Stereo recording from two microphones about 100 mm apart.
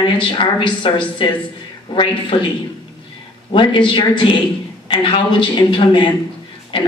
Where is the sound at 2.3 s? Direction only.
55° left (ahead or behind).